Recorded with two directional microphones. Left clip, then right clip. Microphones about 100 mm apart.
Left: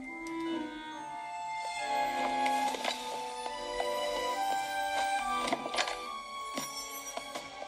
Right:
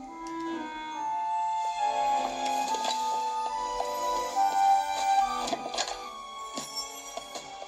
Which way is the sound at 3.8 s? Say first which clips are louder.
Even; 55° left (ahead or behind).